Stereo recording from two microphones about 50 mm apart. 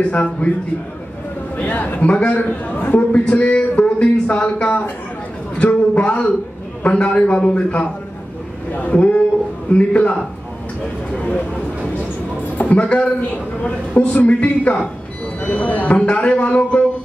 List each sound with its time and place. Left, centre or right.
0.0 s a man's voice: left
1.6 s a man's voice: left
5.6 s a sound: left
6.8 s a man's voice: left
11.1 s a sound: left
12.5 s a man's voice: left